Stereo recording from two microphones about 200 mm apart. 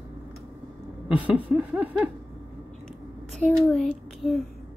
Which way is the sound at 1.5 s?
10° right (ahead or behind).